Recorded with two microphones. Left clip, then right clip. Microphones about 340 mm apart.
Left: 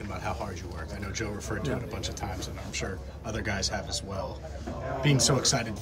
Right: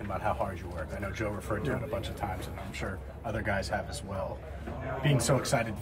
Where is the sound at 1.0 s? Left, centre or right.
Centre.